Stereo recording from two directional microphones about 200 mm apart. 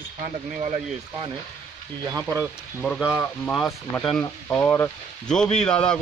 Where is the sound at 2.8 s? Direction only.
Centre (ahead or behind).